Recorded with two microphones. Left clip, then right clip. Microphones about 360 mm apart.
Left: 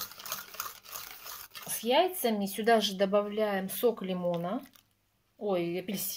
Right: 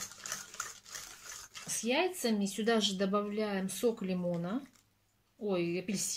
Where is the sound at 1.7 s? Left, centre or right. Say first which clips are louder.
Left 6 dB; left.